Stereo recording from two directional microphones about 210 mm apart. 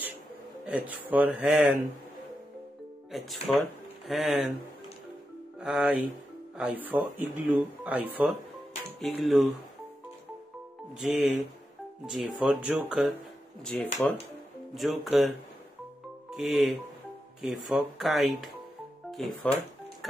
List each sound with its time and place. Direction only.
0.7 s speech: 5° right (ahead or behind)
3.1 s speech: centre (ahead or behind)
5.6 s speech: 5° right (ahead or behind)
11.0 s speech: 5° right (ahead or behind)